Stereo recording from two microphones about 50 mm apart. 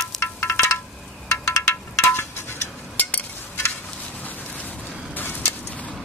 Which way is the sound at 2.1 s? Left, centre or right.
Left.